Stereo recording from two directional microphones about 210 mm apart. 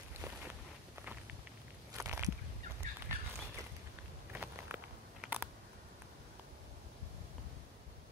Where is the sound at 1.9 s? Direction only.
10° right (ahead or behind).